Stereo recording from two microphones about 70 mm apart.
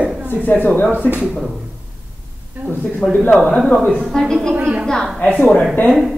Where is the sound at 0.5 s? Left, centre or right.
Left.